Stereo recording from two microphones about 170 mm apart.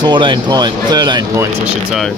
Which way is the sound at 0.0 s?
25° right (ahead or behind).